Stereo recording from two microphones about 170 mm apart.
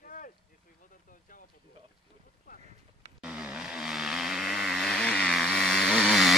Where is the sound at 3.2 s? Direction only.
5° right (ahead or behind).